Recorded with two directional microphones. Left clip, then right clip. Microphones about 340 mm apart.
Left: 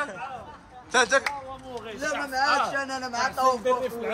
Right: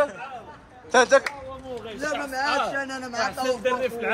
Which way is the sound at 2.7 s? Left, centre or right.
Left.